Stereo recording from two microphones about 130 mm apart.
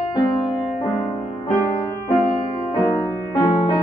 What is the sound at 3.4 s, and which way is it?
Music, 35° left (ahead or behind).